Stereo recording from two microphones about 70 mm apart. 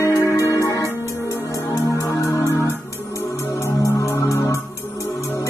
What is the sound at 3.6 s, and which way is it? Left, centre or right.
Music, left.